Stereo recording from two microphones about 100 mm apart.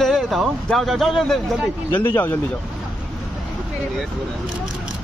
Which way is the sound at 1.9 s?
20° left (ahead or behind).